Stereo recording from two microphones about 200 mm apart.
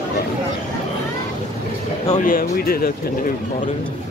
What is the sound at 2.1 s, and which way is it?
Speech, 45° left (ahead or behind).